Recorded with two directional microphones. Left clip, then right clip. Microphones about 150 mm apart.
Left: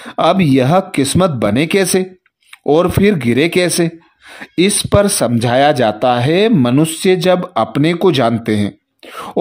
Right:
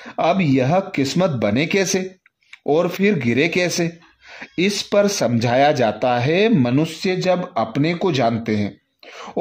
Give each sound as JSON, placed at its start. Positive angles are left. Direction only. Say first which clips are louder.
{"t": 0.0, "sound": "speech", "louder": "left 6 dB", "side_deg": 30}
{"t": 6.8, "sound": "speech", "louder": "left 8 dB", "side_deg": 35}